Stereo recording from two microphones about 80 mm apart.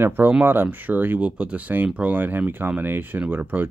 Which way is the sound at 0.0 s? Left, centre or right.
Right.